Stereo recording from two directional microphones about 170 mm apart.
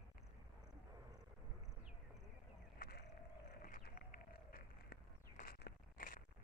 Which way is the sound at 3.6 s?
55° left (ahead or behind).